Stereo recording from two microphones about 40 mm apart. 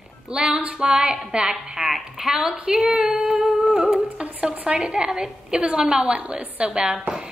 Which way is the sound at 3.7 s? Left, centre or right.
Centre.